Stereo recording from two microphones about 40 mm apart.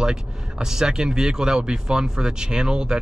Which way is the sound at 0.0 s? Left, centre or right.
Centre.